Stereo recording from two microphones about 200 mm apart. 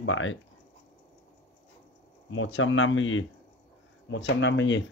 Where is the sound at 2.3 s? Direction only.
75° left (ahead or behind).